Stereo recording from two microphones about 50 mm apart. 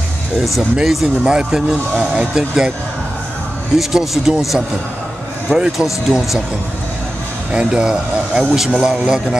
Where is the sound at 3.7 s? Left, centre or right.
Centre.